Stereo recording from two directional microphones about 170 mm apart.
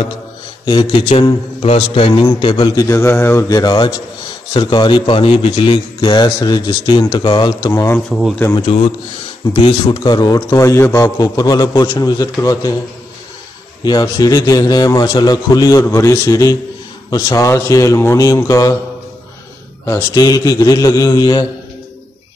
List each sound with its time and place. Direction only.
0.7 s a man's voice: 30° left (ahead or behind)
8.1 s speech: centre (ahead or behind)
9.5 s a man's voice: 30° left (ahead or behind)
13.8 s a man's voice: 25° left (ahead or behind)
19.9 s a man's voice: 20° left (ahead or behind)